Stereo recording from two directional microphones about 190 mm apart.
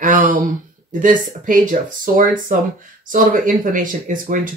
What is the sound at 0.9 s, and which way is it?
Speech, 45° right (ahead or behind).